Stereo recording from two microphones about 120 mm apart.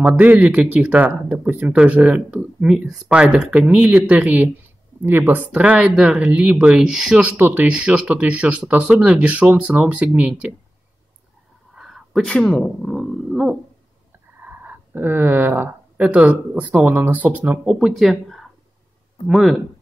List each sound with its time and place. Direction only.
0.0 s speech: 15° right (ahead or behind)
7.3 s speech: 15° right (ahead or behind)
11.7 s a sound: centre (ahead or behind)
14.6 s speech: 15° right (ahead or behind)
17.7 s speech: centre (ahead or behind)